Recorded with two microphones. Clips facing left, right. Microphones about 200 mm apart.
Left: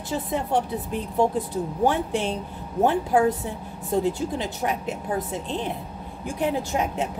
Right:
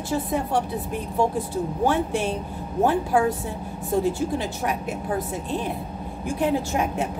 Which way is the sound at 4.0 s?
20° left (ahead or behind).